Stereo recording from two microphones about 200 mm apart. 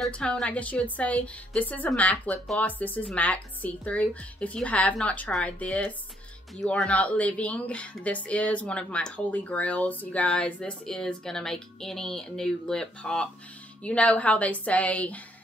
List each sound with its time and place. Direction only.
0.0 s a woman's voice: 5° left (ahead or behind)